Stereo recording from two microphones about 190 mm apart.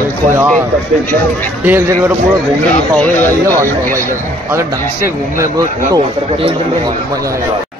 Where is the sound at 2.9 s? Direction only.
10° left (ahead or behind).